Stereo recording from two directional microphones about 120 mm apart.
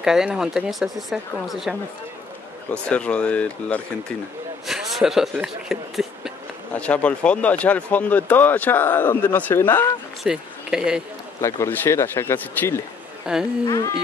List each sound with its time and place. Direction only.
0.0 s speech: 5° right (ahead or behind)
2.7 s speech: 10° left (ahead or behind)
4.6 s speech: 5° right (ahead or behind)
6.7 s speech: 10° left (ahead or behind)
10.2 s speech: 5° right (ahead or behind)
11.4 s speech: 20° left (ahead or behind)
13.3 s speech: 10° right (ahead or behind)
13.7 s a sound: 30° left (ahead or behind)